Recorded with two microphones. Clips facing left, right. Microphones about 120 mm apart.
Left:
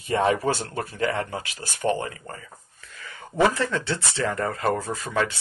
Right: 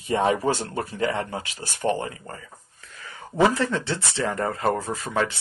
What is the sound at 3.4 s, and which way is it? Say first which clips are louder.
Speech: right 1 dB; 20° right (ahead or behind).